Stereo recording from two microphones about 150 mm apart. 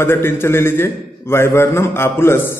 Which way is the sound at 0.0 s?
15° left (ahead or behind).